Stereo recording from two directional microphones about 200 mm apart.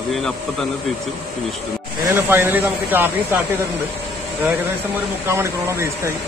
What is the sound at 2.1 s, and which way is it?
Speech, 10° right (ahead or behind).